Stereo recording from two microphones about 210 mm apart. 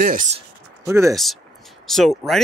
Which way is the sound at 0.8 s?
15° right (ahead or behind).